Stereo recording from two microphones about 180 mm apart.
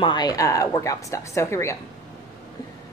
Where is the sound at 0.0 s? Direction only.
25° left (ahead or behind).